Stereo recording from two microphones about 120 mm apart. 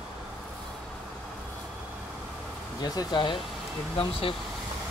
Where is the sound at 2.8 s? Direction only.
35° left (ahead or behind).